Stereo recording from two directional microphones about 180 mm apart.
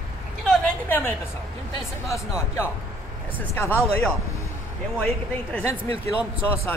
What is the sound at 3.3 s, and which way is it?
Speech, 10° left (ahead or behind).